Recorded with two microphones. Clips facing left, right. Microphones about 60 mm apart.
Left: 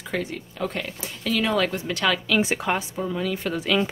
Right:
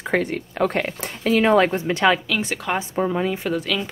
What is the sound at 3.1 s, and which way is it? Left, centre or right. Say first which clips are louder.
Speech: right 4 dB; right.